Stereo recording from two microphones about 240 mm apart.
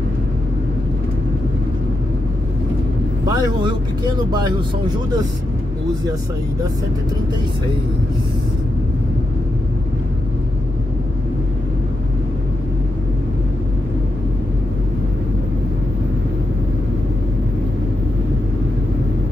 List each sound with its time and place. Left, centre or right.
3.3 s speech: centre